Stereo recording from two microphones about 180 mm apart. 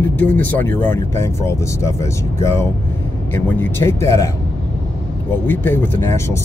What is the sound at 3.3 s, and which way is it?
Speech, 10° left (ahead or behind).